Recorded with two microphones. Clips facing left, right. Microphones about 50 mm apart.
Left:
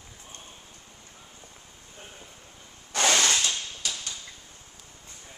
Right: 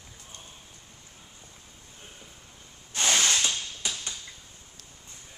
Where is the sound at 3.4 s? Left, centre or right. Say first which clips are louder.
Even; centre.